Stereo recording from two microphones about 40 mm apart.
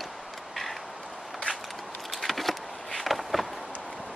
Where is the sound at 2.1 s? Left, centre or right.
Centre.